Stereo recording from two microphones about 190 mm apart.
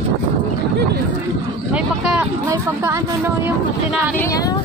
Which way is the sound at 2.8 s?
15° right (ahead or behind).